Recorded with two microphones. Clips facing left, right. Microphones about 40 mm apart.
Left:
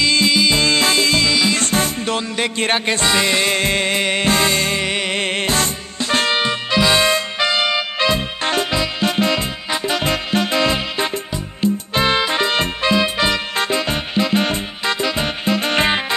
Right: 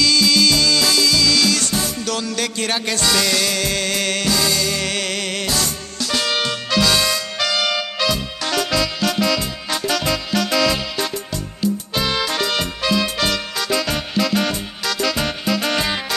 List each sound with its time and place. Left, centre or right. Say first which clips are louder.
0.0 s music: even; left
1.3 s music: left 1 dB; left
1.6 s music: left 4 dB; left
4.3 s music: left 3 dB; left
4.8 s music: left 3 dB; left